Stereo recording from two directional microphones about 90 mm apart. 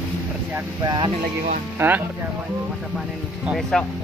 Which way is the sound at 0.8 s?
55° right (ahead or behind).